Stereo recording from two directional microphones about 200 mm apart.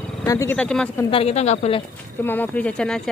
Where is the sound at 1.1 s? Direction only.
30° left (ahead or behind).